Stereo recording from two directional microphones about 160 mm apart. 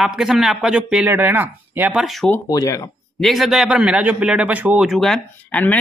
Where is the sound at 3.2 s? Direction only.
Centre (ahead or behind).